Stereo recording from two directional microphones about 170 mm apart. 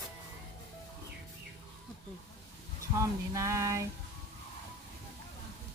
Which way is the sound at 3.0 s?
20° right (ahead or behind).